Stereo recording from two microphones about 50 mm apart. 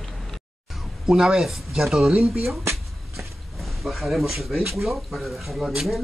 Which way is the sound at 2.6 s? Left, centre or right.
Right.